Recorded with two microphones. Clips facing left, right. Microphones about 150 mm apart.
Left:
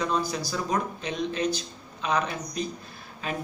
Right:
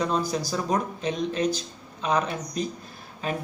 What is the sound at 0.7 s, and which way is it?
Speech, 35° right (ahead or behind).